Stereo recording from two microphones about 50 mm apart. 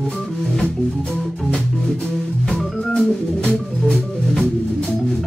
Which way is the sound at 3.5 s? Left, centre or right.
Centre.